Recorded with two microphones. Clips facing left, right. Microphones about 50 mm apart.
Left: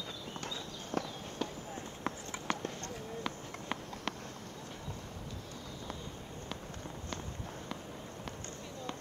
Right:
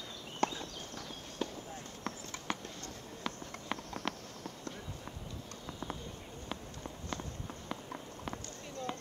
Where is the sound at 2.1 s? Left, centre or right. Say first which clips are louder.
Left 3 dB; centre.